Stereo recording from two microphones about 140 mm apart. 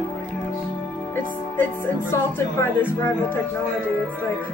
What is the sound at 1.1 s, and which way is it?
Speech, 15° left (ahead or behind).